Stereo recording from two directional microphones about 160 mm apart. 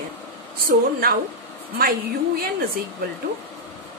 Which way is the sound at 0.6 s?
65° right (ahead or behind).